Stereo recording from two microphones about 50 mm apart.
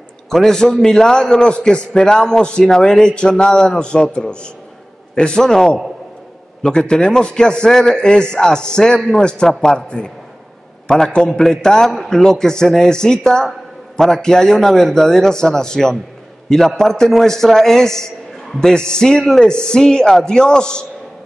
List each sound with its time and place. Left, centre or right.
0.3 s a man's voice: centre